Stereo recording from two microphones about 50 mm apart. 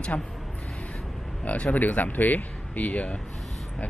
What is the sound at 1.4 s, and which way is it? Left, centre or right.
Speech, left.